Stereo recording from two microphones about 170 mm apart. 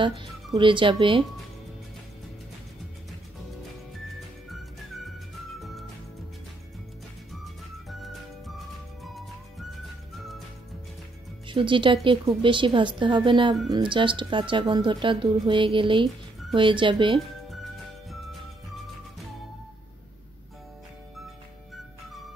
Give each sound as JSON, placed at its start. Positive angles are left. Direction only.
{"t": 0.0, "sound": "speech", "side_deg": -30}
{"t": 4.5, "sound": "music", "side_deg": 0}
{"t": 7.4, "sound": "music", "side_deg": 0}
{"t": 11.4, "sound": "speech", "side_deg": -30}
{"t": 18.1, "sound": "music", "side_deg": 0}